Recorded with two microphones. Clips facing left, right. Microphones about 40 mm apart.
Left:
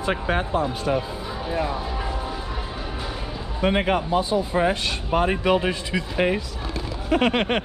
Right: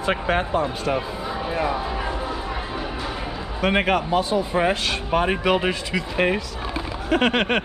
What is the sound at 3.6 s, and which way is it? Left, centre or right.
Speech, right.